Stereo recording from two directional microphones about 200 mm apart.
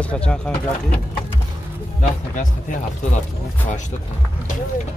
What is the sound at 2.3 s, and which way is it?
Speech, 40° left (ahead or behind).